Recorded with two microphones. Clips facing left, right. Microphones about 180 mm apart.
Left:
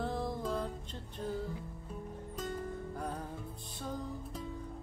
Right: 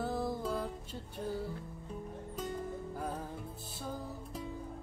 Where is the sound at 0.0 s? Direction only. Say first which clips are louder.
Right 1 dB; 5° right (ahead or behind).